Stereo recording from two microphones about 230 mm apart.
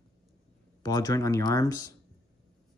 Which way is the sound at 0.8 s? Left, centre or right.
Centre.